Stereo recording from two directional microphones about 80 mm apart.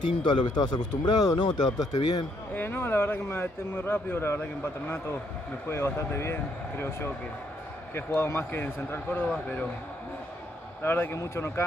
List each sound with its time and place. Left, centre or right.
0.2 s speech: left
2.5 s speech: left
10.8 s speech: left